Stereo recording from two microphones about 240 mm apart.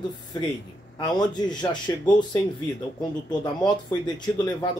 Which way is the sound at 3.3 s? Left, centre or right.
Centre.